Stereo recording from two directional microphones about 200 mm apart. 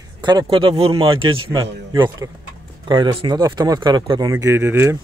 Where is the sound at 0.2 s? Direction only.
20° right (ahead or behind).